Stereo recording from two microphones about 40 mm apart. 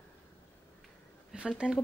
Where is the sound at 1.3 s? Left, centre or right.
Centre.